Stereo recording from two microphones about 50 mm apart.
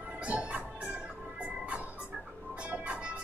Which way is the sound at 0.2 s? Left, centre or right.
Right.